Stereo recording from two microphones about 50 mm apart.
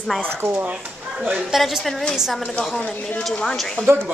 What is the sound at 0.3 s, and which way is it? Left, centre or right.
Speech, right.